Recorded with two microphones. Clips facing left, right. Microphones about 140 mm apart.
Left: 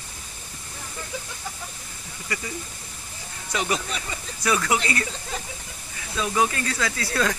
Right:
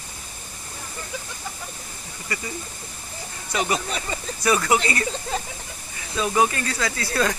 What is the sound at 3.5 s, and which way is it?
Speech, 40° right (ahead or behind).